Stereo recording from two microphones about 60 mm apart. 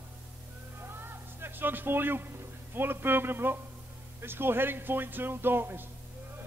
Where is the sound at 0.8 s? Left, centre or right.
Right.